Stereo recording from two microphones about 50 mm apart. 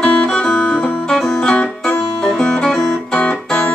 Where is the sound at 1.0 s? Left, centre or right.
Centre.